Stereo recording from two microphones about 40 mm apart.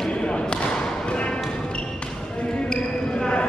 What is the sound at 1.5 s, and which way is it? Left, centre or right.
Music, left.